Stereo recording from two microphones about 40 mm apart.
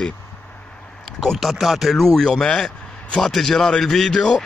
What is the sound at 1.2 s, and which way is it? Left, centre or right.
Speech, centre.